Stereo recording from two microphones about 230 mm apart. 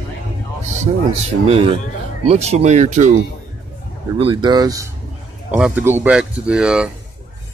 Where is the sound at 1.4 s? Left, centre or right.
Right.